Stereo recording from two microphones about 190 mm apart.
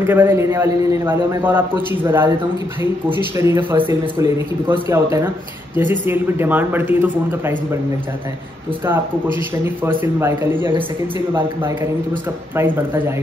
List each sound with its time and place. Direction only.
0.0 s speech: 10° right (ahead or behind)
3.5 s speech: 10° right (ahead or behind)
8.8 s speech: 10° right (ahead or behind)
10.7 s a man's voice: 25° right (ahead or behind)
12.5 s speech: 10° right (ahead or behind)